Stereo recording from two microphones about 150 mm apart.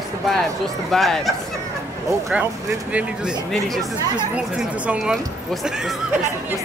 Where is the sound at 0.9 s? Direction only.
Centre (ahead or behind).